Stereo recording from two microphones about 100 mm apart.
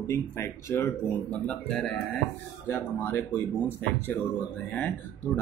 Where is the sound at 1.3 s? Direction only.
10° left (ahead or behind).